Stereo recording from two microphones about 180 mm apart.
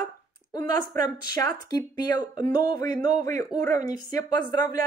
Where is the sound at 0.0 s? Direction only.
20° left (ahead or behind).